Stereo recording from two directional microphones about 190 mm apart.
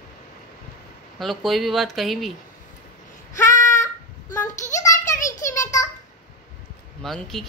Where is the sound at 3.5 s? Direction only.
40° left (ahead or behind).